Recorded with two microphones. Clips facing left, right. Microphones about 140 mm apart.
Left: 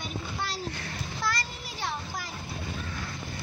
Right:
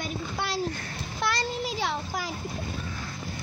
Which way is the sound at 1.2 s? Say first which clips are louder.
Right 6 dB; 70° right (ahead or behind).